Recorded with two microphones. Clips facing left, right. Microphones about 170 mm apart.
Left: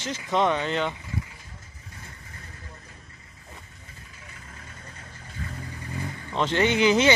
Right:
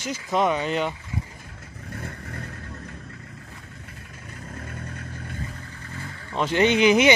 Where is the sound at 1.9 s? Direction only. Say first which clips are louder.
Right 11 dB; 65° right (ahead or behind).